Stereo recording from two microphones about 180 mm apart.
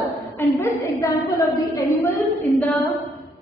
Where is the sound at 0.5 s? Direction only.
10° left (ahead or behind).